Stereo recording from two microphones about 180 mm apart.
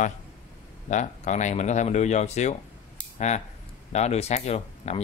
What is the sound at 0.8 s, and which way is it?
Speech, 40° left (ahead or behind).